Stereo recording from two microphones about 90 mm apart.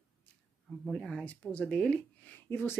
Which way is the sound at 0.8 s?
5° left (ahead or behind).